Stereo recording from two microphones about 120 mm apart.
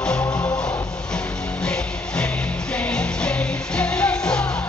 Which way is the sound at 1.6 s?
5° left (ahead or behind).